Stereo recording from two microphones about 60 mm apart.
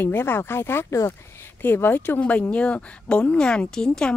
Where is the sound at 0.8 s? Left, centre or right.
Left.